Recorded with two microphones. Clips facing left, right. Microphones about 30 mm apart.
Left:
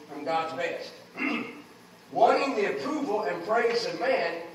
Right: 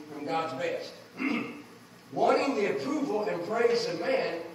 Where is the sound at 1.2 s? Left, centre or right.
Centre.